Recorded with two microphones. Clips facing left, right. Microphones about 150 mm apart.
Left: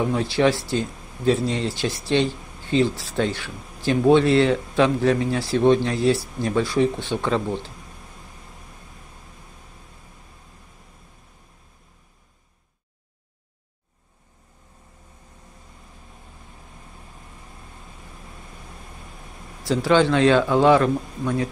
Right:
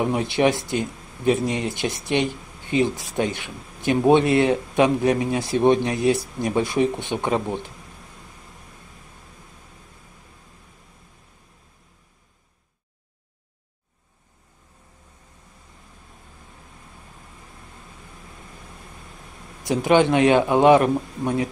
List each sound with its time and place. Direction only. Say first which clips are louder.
0.0 s speech: even; 20° right (ahead or behind)
19.6 s speech: right 1 dB; 20° right (ahead or behind)